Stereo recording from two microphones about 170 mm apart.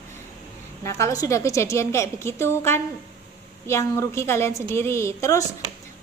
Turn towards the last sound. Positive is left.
turn(degrees=20)  # may be behind; listen again after turning